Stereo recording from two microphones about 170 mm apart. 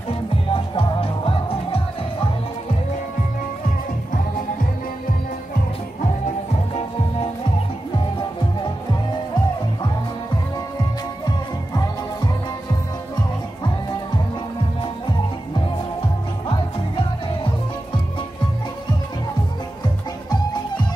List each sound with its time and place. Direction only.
0.5 s music: 30° left (ahead or behind)
11.2 s music: 20° left (ahead or behind)
16.4 s music: 30° left (ahead or behind)